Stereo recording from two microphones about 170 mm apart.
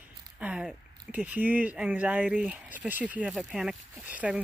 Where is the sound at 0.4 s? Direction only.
5° right (ahead or behind).